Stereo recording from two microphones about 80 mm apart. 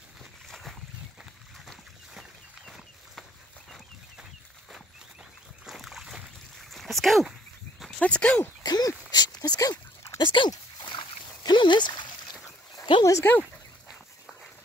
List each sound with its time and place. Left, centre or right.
0.2 s a sound: centre
5.7 s rowboat: centre
6.7 s dog: centre
8.0 s speech: centre
8.6 s a sound: left
10.2 s speech: left
10.8 s splash: left
12.9 s speech: left
13.4 s dog: centre